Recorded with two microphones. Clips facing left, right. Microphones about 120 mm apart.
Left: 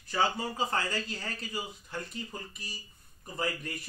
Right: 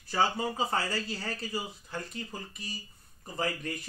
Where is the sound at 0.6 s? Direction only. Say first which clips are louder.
Right 1 dB; 5° right (ahead or behind).